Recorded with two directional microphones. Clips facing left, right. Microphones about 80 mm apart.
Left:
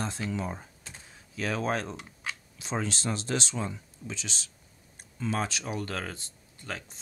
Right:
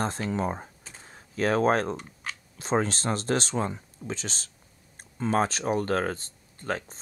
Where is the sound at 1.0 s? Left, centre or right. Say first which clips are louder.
Right 7 dB; right.